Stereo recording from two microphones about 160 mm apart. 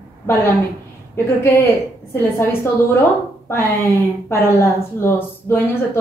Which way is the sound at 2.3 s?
15° left (ahead or behind).